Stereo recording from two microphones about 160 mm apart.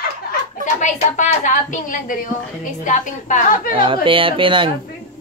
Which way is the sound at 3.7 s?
35° right (ahead or behind).